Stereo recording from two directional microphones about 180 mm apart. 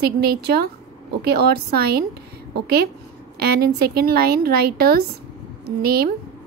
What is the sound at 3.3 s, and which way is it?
A woman's voice, 60° right (ahead or behind).